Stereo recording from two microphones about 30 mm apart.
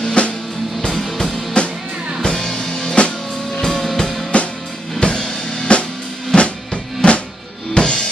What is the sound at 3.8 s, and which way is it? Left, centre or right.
Music, centre.